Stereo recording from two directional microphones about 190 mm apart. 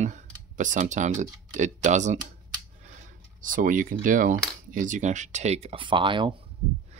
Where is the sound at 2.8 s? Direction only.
45° right (ahead or behind); by 6.3 s 25° right (ahead or behind).